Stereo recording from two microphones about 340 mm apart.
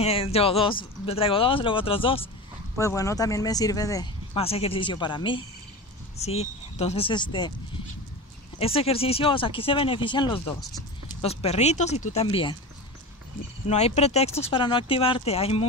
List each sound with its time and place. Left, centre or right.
0.0 s speech: centre
8.5 s speech: centre
13.7 s speech: centre